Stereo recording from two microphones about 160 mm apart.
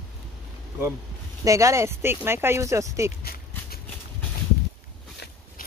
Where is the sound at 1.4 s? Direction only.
20° right (ahead or behind).